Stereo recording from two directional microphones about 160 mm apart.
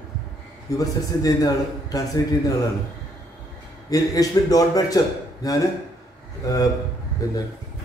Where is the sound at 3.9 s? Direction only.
20° left (ahead or behind).